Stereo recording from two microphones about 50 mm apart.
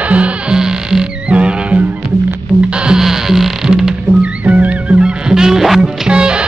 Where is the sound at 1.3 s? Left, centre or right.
Right; by 3.9 s centre.